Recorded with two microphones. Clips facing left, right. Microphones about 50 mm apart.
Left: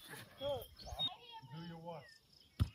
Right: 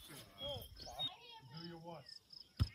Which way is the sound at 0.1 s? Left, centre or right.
Left.